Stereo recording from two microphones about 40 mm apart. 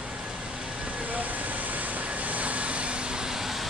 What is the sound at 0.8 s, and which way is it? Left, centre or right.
Vehicle, right.